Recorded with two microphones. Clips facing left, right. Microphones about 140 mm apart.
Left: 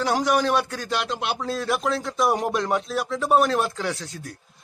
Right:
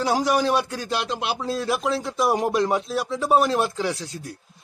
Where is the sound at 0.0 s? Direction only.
Centre (ahead or behind).